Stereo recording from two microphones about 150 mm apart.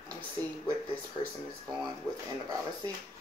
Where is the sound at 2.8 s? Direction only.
30° right (ahead or behind).